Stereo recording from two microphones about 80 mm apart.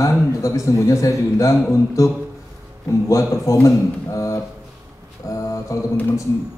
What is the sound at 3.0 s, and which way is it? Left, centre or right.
Speech, left.